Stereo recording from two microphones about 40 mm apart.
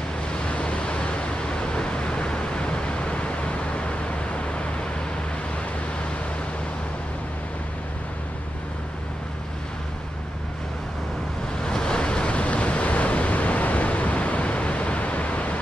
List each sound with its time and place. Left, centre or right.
0.5 s vehicle: left
11.6 s waves: centre; by 15.6 s left